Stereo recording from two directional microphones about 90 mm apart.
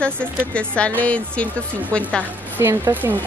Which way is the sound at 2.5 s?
30° right (ahead or behind).